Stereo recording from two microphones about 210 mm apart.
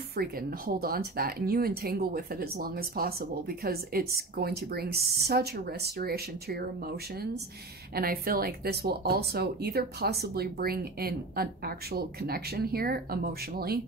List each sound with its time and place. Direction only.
0.1 s speech: 45° right (ahead or behind)